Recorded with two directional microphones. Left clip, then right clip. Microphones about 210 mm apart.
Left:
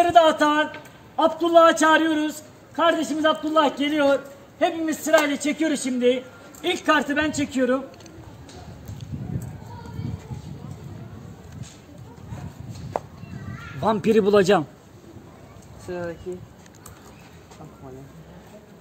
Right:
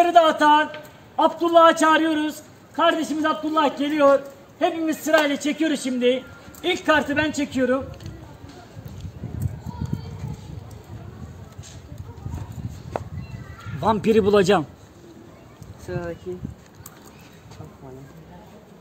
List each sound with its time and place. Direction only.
0.0 s a man's voice: 5° left (ahead or behind)
13.7 s a man's voice: centre (ahead or behind)
15.9 s speech: 15° right (ahead or behind)